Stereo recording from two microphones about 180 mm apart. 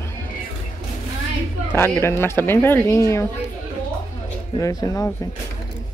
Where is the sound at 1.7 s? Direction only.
10° left (ahead or behind).